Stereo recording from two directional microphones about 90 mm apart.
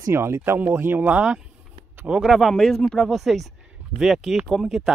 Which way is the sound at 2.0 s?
5° right (ahead or behind).